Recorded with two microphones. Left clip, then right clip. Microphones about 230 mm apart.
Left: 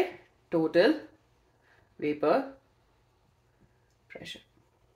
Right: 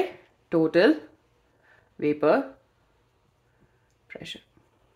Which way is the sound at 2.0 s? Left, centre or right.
Right.